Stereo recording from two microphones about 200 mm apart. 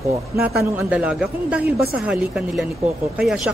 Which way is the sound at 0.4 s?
Centre (ahead or behind).